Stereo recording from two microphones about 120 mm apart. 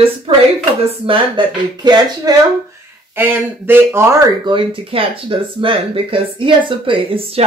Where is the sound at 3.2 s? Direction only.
20° right (ahead or behind).